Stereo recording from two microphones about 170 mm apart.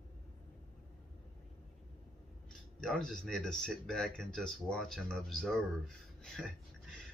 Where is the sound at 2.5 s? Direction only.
5° left (ahead or behind).